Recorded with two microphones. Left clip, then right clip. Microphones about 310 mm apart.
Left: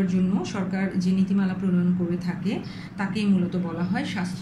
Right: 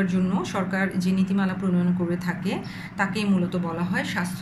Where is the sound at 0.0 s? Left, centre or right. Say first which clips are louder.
Right 1 dB; right.